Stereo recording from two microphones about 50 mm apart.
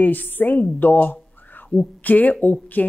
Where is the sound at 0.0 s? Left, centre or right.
Left.